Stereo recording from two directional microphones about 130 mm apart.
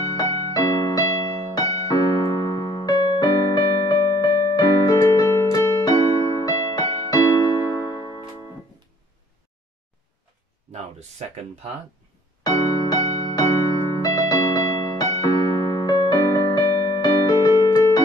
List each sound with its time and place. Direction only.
0.0 s music: 30° left (ahead or behind)
3.9 s electric piano: 30° left (ahead or behind)
10.7 s a sound: 55° right (ahead or behind)
12.4 s music: 30° left (ahead or behind)